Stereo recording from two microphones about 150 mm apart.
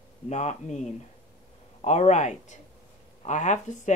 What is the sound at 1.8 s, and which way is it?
Speech, 50° left (ahead or behind).